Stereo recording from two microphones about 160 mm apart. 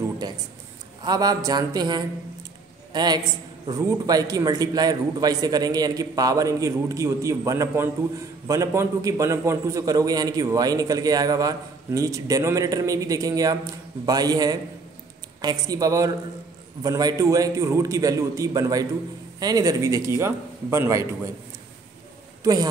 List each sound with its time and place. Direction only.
1.0 s a man's voice: 25° right (ahead or behind)
22.4 s speech: 25° right (ahead or behind)